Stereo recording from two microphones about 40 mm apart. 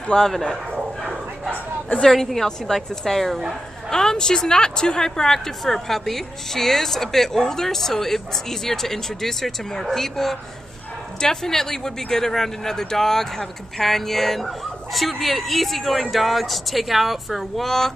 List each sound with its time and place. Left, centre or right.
0.1 s a woman's voice: centre
2.0 s a woman's voice: centre